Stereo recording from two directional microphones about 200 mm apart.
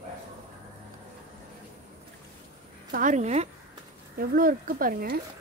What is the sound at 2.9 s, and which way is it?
Speech, 40° right (ahead or behind).